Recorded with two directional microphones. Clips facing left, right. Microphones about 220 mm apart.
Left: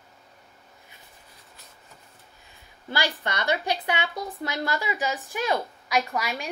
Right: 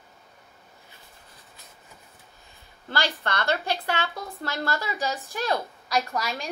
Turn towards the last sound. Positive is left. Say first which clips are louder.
# left 1 dB
turn(degrees=10)  # may be behind; listen again after turning